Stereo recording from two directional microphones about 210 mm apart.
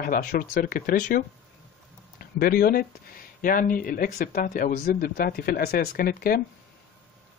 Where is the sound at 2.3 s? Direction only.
45° left (ahead or behind).